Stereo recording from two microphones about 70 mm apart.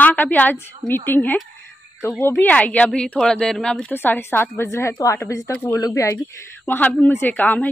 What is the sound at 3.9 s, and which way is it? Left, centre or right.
A woman's voice, left.